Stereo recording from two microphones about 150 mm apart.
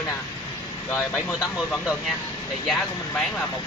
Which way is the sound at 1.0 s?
Centre (ahead or behind).